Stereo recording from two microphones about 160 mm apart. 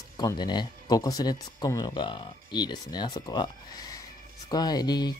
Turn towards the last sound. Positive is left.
turn(degrees=25)  # may be behind; listen again after turning